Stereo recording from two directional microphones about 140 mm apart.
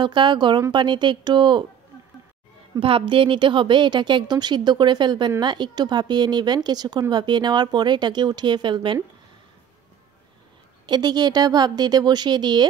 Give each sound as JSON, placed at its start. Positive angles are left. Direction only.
{"t": 0.0, "sound": "a woman's voice", "side_deg": -35}
{"t": 2.8, "sound": "a woman's voice", "side_deg": -40}
{"t": 10.9, "sound": "speech", "side_deg": -30}